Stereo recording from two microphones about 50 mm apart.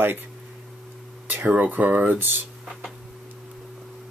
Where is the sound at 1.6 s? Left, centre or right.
Right.